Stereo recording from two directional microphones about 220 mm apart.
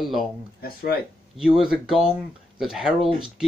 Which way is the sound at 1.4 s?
5° right (ahead or behind).